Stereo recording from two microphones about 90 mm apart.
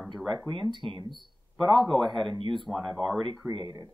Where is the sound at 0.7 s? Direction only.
60° right (ahead or behind).